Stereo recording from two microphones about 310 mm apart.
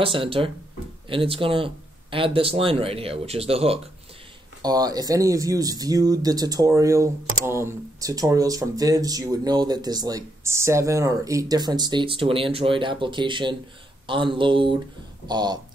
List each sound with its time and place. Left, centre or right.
0.0 s speech: centre